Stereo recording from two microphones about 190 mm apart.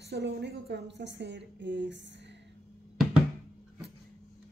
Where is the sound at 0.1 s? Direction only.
60° right (ahead or behind).